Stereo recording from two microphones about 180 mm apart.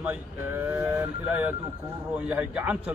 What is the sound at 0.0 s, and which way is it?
Speech, 10° right (ahead or behind).